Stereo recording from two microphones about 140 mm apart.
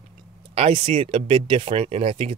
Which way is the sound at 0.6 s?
40° right (ahead or behind).